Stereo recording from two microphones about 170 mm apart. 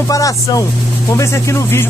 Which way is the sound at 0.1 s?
20° left (ahead or behind).